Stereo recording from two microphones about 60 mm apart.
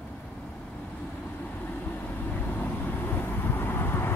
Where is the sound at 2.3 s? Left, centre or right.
Left.